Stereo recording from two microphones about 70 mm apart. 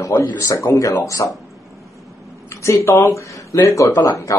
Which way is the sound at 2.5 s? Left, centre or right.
Left.